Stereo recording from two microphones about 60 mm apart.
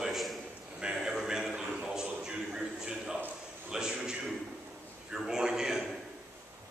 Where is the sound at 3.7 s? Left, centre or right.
Centre.